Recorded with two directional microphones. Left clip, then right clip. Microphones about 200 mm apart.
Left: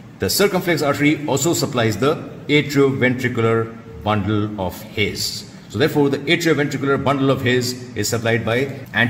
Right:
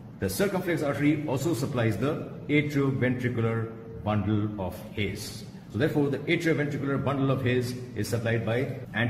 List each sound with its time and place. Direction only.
0.2 s a man's voice: 45° left (ahead or behind)